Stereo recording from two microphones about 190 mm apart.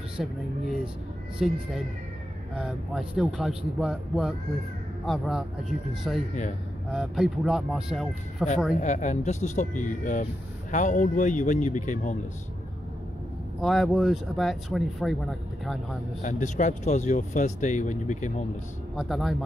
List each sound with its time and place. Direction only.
0.2 s speech: centre (ahead or behind)
1.4 s speech: centre (ahead or behind)
8.7 s speech: 40° left (ahead or behind)
13.6 s speech: centre (ahead or behind)
16.2 s speech: 40° left (ahead or behind)
18.9 s speech: centre (ahead or behind)